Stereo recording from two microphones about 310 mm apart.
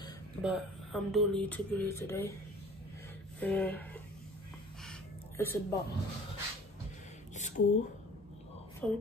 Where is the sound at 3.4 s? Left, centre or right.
Centre.